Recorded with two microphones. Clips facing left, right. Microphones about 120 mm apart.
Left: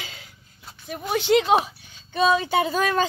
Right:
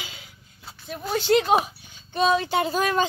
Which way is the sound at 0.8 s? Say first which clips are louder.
Left 1 dB; 15° left (ahead or behind).